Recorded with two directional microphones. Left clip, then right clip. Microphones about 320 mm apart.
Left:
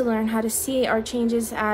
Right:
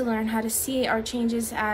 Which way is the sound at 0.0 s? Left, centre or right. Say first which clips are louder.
Left 3 dB; centre.